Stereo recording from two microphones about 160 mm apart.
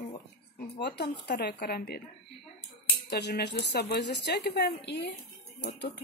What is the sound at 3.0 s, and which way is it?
Speech, 90° left.